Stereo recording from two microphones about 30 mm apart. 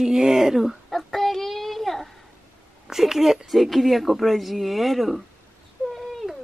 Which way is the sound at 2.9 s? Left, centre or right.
Centre.